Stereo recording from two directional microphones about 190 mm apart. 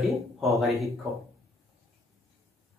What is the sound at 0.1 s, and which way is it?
Speech, centre (ahead or behind).